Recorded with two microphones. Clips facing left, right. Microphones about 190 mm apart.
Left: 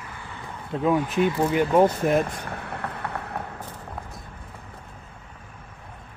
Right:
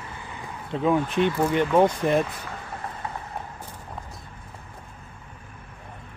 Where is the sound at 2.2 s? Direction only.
60° left (ahead or behind).